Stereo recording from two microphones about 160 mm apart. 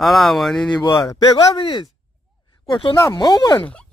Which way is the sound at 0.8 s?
25° left (ahead or behind).